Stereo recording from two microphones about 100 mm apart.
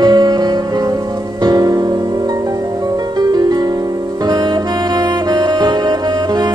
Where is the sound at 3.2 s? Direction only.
40° right (ahead or behind).